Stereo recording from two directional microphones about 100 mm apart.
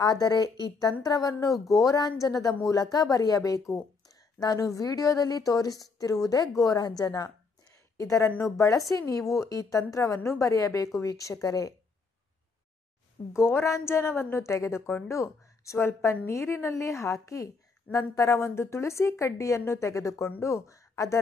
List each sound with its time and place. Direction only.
0.0 s a woman's voice: 40° left (ahead or behind)
13.3 s a woman's voice: 25° left (ahead or behind)